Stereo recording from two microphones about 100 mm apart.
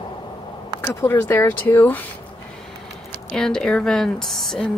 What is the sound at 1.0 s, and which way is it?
Speech, 25° left (ahead or behind).